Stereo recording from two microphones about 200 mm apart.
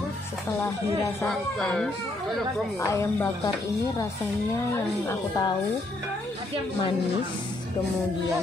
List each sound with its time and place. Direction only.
1.2 s speech: 5° left (ahead or behind)
2.8 s speech: 15° left (ahead or behind)
5.0 s speech: 15° left (ahead or behind)